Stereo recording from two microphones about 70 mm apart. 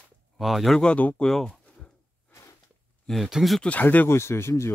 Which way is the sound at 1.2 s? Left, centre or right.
Centre.